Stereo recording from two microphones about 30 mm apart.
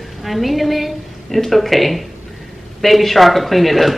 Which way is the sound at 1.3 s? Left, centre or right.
Centre.